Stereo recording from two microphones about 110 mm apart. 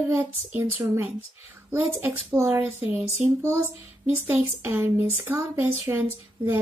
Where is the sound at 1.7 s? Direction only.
20° right (ahead or behind).